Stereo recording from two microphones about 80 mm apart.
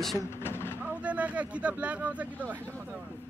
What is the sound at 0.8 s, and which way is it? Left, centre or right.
Speech, centre.